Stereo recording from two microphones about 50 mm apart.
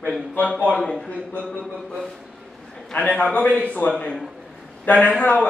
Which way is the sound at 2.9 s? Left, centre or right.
Left.